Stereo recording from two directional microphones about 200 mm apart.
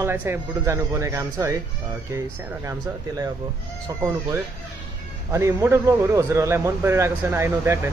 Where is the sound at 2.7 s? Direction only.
15° right (ahead or behind).